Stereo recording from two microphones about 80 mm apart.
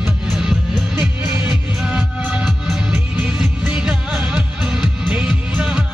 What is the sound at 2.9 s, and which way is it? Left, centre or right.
Music, right.